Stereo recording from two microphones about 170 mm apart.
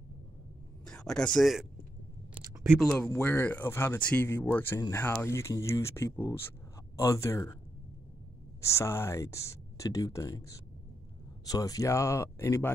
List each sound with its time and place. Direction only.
0.8 s speech: 5° left (ahead or behind)
2.4 s a sound: 15° right (ahead or behind)
2.9 s speech: 10° left (ahead or behind)
8.5 s speech: 15° left (ahead or behind)